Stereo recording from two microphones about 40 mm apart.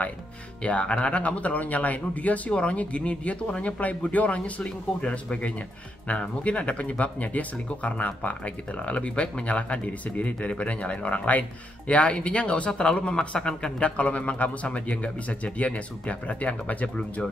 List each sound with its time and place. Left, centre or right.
0.7 s speech: left
4.6 s speech: left
13.8 s speech: left